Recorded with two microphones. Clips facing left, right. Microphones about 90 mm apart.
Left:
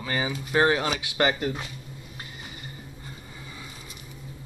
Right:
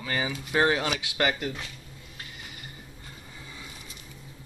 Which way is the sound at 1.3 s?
35° left (ahead or behind).